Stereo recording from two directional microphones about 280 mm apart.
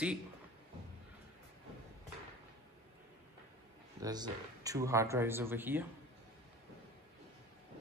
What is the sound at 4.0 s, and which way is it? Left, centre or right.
Speech, centre.